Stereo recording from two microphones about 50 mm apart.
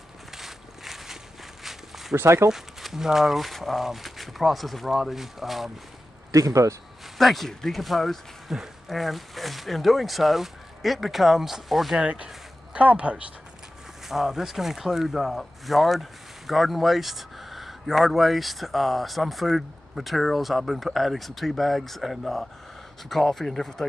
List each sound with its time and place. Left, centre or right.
0.3 s a sound: centre
1.6 s walk: centre
2.1 s speech: right
2.5 s speech: centre
6.3 s speech: right
7.2 s speech: centre
12.0 s speech: right
14.0 s speech: centre